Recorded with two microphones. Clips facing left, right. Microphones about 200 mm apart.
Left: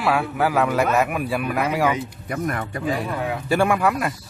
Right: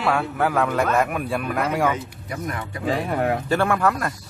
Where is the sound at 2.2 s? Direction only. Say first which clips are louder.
Left 4 dB; 55° left (ahead or behind).